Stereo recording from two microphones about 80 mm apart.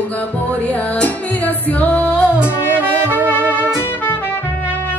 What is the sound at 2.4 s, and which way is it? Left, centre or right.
Music, right.